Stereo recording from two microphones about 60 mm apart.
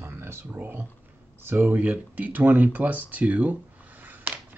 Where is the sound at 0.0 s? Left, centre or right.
Right.